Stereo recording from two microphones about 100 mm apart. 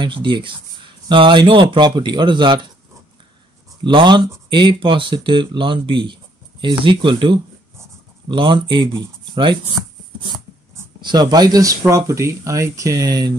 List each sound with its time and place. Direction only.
0.0 s speech: 55° right (ahead or behind)
3.8 s speech: 50° right (ahead or behind)
11.0 s speech: 45° right (ahead or behind)